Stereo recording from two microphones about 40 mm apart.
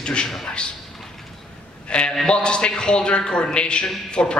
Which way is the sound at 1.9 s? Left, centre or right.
Left.